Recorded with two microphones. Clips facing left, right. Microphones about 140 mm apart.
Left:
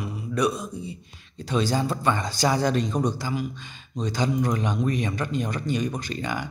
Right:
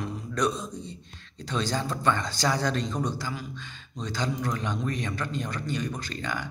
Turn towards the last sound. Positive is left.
turn(degrees=15)  # may be behind; listen again after turning